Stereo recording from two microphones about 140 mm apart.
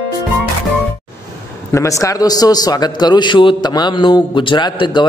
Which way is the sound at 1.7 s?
20° left (ahead or behind).